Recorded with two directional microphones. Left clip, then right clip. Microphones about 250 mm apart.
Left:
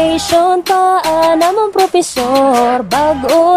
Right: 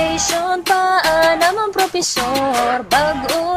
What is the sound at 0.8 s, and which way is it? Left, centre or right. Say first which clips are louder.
Music: left 1 dB; centre.